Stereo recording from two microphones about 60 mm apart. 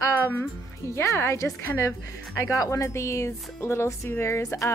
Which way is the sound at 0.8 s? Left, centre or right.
Left.